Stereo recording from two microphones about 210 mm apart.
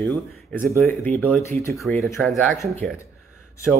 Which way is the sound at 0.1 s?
10° left (ahead or behind).